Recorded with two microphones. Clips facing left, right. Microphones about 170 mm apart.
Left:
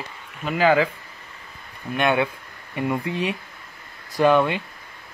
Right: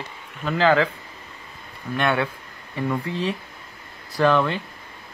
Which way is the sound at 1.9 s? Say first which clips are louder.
Left 2 dB; 15° left (ahead or behind).